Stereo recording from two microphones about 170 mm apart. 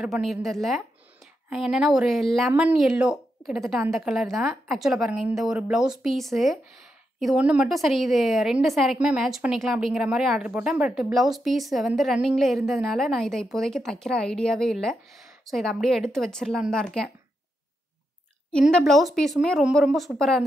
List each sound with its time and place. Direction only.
0.0 s a woman's voice: 5° right (ahead or behind)
18.7 s a woman's voice: centre (ahead or behind)